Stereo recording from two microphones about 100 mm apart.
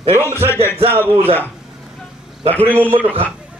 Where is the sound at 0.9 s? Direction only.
20° right (ahead or behind).